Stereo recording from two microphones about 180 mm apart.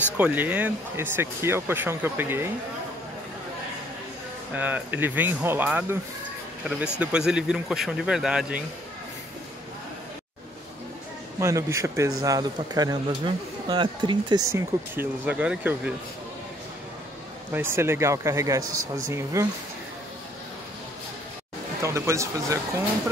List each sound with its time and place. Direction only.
0.2 s speech: 10° right (ahead or behind)
4.6 s speech: 10° right (ahead or behind)
11.3 s speech: 15° right (ahead or behind)
17.5 s speech: 15° right (ahead or behind)
21.8 s speech: 15° right (ahead or behind)